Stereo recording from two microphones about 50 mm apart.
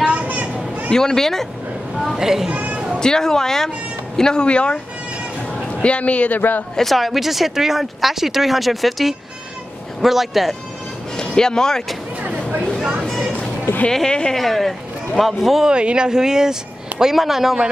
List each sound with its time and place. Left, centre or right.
0.0 s children playing: right
0.8 s speech: centre
2.1 s speech: centre
2.5 s a sound: right
3.0 s speech: centre; by 6.6 s left
6.8 s speech: centre
11.1 s speech: centre
13.8 s speech: centre
15.7 s speech: centre